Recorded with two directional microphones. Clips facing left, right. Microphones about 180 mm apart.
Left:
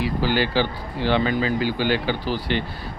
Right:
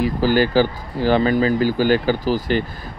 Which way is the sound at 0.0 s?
45° right (ahead or behind).